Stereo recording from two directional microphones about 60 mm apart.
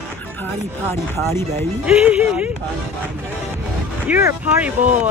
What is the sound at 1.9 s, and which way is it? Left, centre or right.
Speech, centre.